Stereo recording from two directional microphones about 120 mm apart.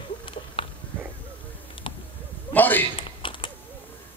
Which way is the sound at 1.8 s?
45° left (ahead or behind).